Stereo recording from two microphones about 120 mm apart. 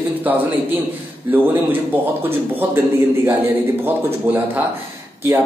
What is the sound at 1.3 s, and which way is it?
Speech, 15° right (ahead or behind).